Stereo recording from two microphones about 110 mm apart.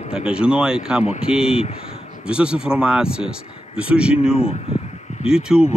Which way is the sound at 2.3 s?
10° right (ahead or behind).